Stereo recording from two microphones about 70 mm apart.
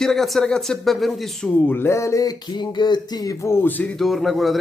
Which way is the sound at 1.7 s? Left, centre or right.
Left.